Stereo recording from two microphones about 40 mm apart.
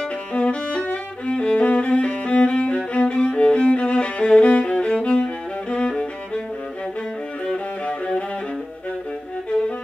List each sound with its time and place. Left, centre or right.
0.3 s music: left
7.4 s music: left